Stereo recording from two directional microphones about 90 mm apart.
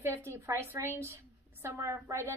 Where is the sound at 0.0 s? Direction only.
30° right (ahead or behind).